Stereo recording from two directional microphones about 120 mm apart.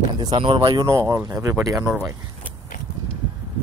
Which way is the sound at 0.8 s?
25° right (ahead or behind).